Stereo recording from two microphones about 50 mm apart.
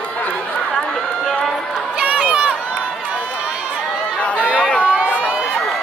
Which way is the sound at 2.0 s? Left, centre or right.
Right.